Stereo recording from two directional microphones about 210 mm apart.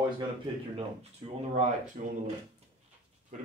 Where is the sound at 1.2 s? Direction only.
30° right (ahead or behind).